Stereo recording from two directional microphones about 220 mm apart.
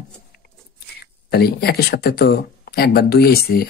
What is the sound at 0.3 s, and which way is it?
Speech, 45° left (ahead or behind).